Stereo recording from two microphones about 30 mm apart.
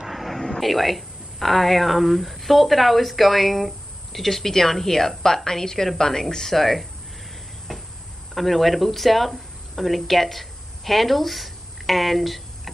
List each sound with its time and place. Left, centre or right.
0.0 s a sound: centre
0.4 s speech: centre
6.5 s speech: centre
8.4 s speech: centre